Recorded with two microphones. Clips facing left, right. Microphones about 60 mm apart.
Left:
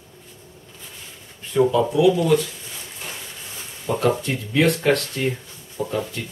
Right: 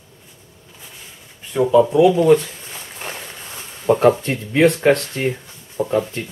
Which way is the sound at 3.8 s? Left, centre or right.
Right.